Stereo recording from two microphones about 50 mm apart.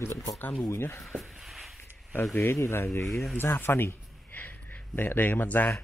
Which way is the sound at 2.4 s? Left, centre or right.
Left.